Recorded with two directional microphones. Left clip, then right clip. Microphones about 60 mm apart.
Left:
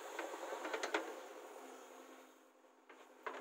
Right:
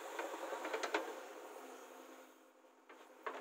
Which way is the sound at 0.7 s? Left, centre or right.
Centre.